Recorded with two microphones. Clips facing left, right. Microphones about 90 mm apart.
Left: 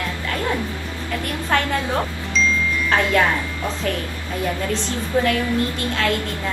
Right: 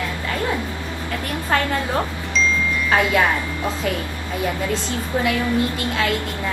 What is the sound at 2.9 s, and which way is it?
Speech, 5° right (ahead or behind).